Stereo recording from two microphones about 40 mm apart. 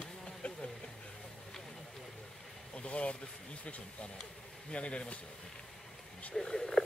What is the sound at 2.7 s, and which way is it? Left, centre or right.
Vehicle, left.